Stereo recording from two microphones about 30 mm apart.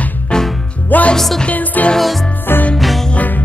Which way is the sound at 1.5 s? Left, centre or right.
Left.